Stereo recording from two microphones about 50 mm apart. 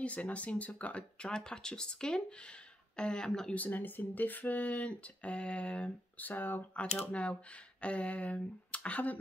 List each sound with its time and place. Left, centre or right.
0.0 s speech: left
1.2 s speech: centre
3.5 s speech: left
6.2 s speech: left
6.7 s speech: left